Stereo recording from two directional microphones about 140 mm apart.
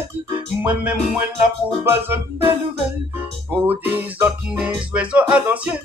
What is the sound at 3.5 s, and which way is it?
Music, 10° right (ahead or behind).